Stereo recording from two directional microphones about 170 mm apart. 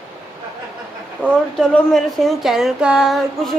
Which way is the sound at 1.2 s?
10° left (ahead or behind).